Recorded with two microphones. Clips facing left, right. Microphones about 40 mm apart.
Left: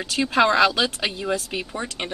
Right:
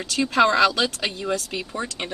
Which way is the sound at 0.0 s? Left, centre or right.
Centre.